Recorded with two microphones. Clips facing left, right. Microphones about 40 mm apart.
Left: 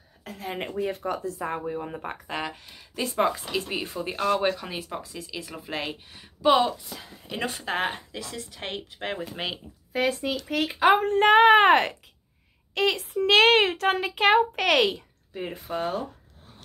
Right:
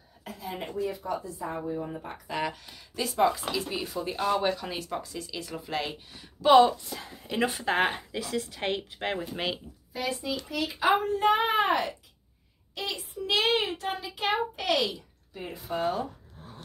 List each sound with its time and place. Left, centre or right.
0.2 s a woman's voice: left
1.7 s a woman's voice: left
2.3 s speech: left
4.6 s speech: centre
6.5 s a woman's voice: centre
9.9 s a woman's voice: left
15.3 s speech: left